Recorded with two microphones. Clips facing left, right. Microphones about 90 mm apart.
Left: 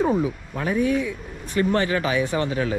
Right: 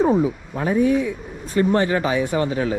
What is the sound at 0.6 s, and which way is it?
Speech, 35° right (ahead or behind).